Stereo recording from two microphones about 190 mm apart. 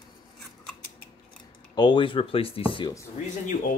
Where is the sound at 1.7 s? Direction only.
25° left (ahead or behind).